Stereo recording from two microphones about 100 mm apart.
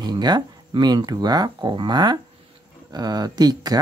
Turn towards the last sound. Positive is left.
turn(degrees=-40)  # may be behind; listen again after turning